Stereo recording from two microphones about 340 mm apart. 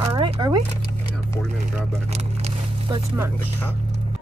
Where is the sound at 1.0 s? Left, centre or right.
Centre.